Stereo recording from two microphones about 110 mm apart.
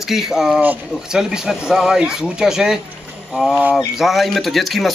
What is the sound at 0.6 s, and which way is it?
Speech, 15° right (ahead or behind).